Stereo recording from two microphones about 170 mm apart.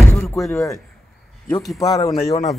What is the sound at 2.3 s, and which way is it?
Speech, 45° left (ahead or behind).